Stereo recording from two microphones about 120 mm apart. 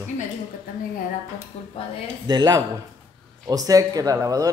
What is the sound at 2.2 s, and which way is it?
Speech, 35° right (ahead or behind).